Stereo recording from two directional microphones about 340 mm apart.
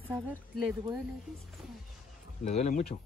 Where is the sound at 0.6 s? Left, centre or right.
Centre.